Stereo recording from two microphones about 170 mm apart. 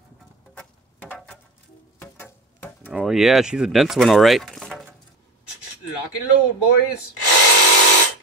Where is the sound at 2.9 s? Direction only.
5° right (ahead or behind).